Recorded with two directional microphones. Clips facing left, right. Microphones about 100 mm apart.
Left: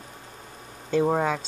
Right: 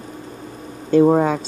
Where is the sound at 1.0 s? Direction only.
15° right (ahead or behind).